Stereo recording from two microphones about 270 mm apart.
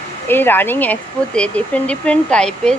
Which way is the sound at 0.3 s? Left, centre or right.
Centre.